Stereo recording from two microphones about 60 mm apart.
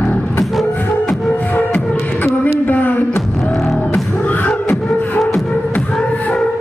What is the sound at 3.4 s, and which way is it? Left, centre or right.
Music, centre.